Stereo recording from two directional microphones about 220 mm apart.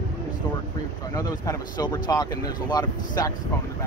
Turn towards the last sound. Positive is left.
turn(degrees=15)  # may be behind; listen again after turning